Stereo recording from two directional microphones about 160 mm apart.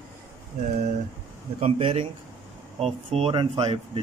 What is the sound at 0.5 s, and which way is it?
Speech, 45° right (ahead or behind).